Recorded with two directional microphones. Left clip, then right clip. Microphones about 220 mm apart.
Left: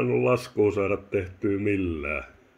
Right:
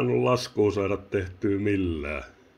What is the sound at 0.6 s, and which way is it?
Speech, centre (ahead or behind).